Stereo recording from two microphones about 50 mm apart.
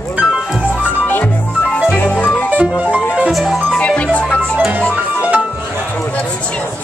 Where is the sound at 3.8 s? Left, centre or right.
Left.